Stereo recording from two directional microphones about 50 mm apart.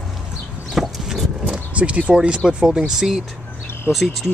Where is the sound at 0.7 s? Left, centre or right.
Centre.